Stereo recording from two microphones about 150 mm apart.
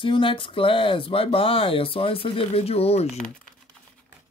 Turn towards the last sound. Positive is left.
turn(degrees=45)  # may be behind; listen again after turning